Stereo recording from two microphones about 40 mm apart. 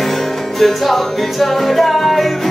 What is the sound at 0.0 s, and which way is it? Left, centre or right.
Music, centre.